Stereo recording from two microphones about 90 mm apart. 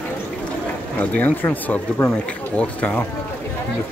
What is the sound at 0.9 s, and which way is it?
Speech, 20° left (ahead or behind).